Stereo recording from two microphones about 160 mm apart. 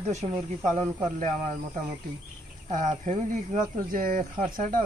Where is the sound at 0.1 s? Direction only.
45° right (ahead or behind).